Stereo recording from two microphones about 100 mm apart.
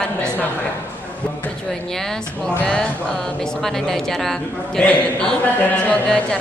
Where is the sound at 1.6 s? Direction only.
5° left (ahead or behind).